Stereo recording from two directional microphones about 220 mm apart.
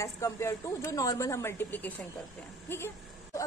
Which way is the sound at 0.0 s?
15° left (ahead or behind).